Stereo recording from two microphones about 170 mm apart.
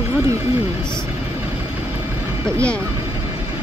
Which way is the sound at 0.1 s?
20° right (ahead or behind).